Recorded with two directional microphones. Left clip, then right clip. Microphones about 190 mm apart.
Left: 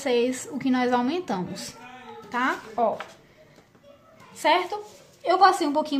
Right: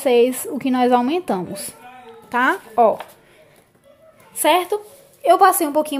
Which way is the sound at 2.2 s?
45° right (ahead or behind).